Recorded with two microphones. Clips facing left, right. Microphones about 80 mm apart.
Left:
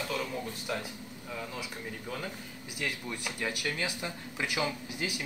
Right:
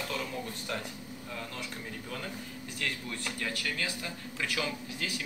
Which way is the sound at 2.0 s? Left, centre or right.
Centre.